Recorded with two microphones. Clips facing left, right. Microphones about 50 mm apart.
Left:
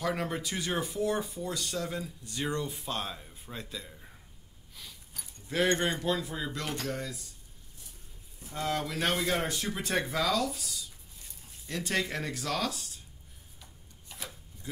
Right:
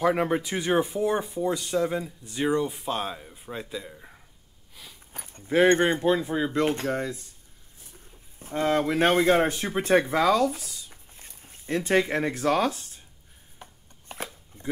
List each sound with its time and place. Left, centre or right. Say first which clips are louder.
0.0 s speech: right 9 dB; right
5.1 s speech: right 9 dB; right
8.4 s speech: right 8 dB; right
10.9 s a sound: right 4 dB; right
13.6 s chopping: right 10 dB; right